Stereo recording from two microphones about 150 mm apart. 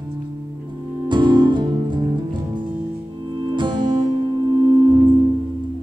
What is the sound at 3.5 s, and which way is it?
Music, 30° right (ahead or behind).